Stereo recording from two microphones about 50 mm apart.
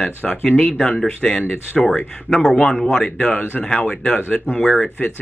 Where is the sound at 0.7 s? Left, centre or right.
Centre.